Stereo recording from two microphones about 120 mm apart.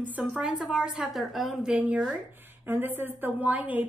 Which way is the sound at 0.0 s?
10° right (ahead or behind).